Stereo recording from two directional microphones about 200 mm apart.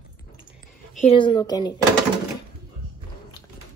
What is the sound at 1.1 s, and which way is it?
Speech, 25° left (ahead or behind).